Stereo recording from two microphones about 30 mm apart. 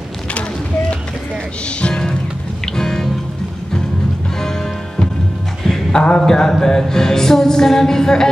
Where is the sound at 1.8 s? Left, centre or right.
Left.